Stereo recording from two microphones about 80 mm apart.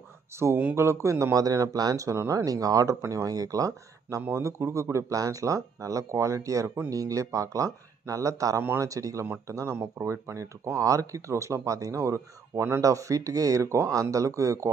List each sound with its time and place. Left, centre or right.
0.3 s speech: right